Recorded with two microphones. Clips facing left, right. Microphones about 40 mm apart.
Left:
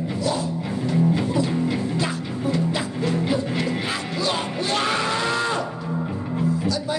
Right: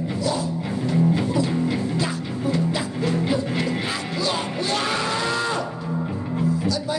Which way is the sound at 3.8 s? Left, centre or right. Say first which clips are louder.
Even; left.